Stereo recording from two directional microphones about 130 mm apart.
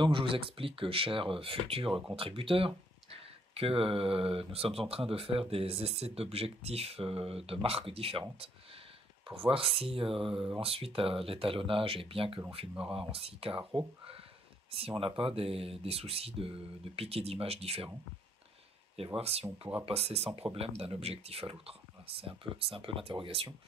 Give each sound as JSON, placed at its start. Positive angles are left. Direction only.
{"t": 0.0, "sound": "speech", "side_deg": -40}
{"t": 14.7, "sound": "speech", "side_deg": -45}
{"t": 19.1, "sound": "speech", "side_deg": -50}